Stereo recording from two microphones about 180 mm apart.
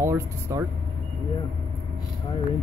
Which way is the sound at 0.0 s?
15° right (ahead or behind).